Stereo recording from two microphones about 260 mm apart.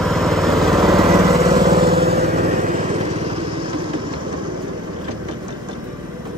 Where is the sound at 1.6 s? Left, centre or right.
Right.